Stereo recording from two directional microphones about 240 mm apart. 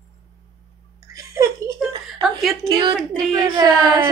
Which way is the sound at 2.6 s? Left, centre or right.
Centre.